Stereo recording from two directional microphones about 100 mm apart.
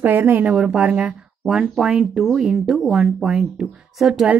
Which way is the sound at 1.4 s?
5° right (ahead or behind).